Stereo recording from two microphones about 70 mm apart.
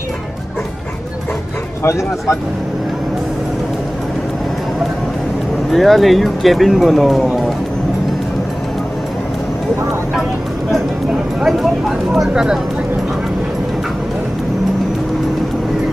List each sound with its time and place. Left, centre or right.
1.8 s speech: left
5.7 s speech: centre
12.1 s speech: centre